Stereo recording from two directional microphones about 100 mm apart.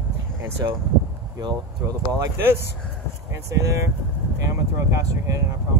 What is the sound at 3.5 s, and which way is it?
Speech, 30° right (ahead or behind).